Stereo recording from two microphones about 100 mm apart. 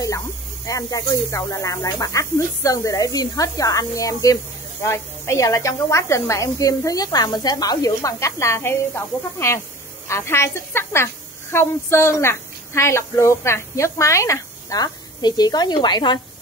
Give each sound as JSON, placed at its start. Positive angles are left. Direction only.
{"t": 0.7, "sound": "a woman's voice", "side_deg": 35}